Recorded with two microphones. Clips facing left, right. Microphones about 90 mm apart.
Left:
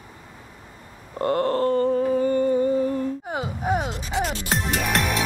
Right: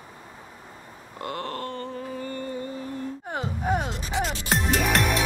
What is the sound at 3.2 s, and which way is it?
Music, 5° left (ahead or behind).